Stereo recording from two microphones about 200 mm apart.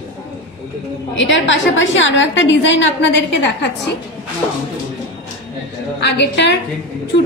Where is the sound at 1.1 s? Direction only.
65° left (ahead or behind).